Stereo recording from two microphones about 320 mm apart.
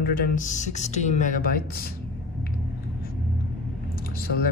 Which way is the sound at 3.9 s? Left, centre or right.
Left.